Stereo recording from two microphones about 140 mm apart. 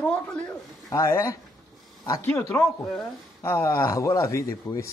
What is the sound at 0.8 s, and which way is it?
A man's voice, 20° left (ahead or behind).